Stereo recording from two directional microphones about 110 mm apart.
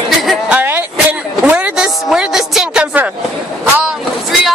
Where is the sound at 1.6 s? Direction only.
10° right (ahead or behind).